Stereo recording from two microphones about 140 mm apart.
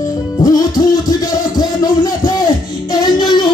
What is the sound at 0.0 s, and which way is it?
Music, 25° left (ahead or behind).